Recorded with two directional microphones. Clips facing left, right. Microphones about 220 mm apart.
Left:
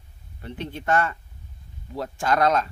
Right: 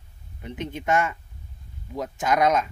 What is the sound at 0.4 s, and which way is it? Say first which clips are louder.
Speech: right 1 dB; 15° right (ahead or behind).